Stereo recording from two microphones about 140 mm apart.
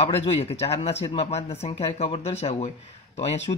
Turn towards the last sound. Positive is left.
turn(degrees=50)  # may be behind; listen again after turning